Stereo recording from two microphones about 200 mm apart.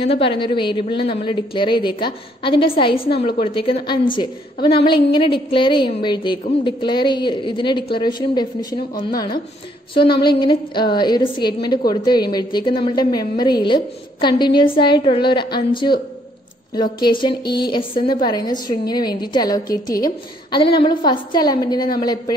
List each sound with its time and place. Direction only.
0.0 s a woman's voice: 30° left (ahead or behind)